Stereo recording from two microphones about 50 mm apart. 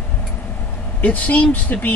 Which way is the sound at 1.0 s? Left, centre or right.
Left.